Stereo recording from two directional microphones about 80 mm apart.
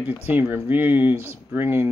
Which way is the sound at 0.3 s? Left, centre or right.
Right.